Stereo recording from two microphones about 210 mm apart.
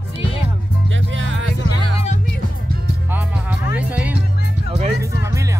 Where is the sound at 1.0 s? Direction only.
65° right (ahead or behind).